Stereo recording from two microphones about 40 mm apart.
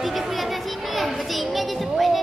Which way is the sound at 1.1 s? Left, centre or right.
Centre.